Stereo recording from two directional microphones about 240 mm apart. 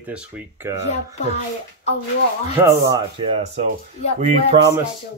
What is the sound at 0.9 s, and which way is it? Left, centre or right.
Music, left.